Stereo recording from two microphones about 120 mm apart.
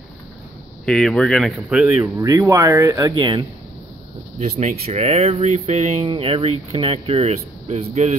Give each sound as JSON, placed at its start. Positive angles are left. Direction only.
{"t": 0.8, "sound": "speech", "side_deg": 5}
{"t": 1.7, "sound": "speech", "side_deg": -10}
{"t": 2.1, "sound": "speech", "side_deg": -25}
{"t": 4.4, "sound": "speech", "side_deg": -65}
{"t": 6.0, "sound": "speech", "side_deg": -50}